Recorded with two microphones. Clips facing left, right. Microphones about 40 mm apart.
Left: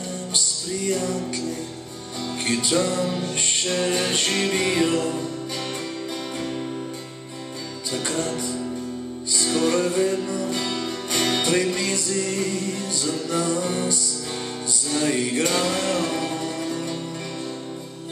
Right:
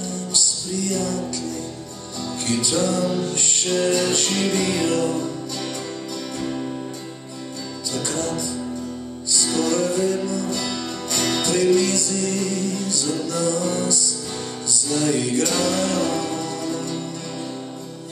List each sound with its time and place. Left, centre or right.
0.3 s music: left
2.4 s music: left
7.9 s music: left